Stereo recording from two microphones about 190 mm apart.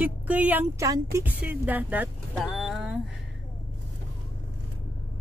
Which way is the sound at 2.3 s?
Centre (ahead or behind).